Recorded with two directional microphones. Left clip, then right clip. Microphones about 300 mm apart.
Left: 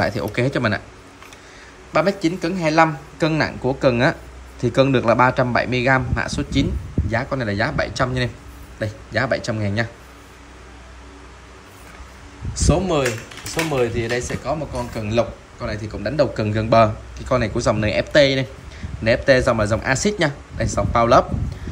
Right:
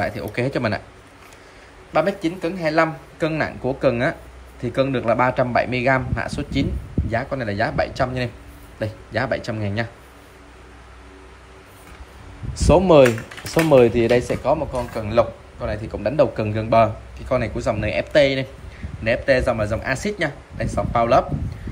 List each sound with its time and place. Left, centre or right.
0.0 s speech: centre
1.9 s speech: centre
12.5 s speech: centre